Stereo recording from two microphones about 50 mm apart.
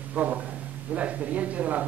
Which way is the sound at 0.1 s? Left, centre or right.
Right.